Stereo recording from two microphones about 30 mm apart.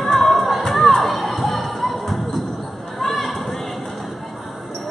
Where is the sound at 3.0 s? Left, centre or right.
Centre.